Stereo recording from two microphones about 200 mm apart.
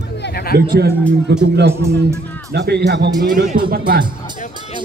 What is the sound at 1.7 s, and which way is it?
Speech, 15° right (ahead or behind).